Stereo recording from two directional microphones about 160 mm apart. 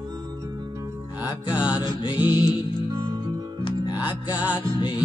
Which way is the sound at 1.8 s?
30° left (ahead or behind).